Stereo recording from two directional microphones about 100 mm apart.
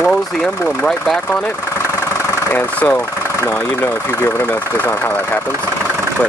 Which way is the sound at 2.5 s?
15° left (ahead or behind).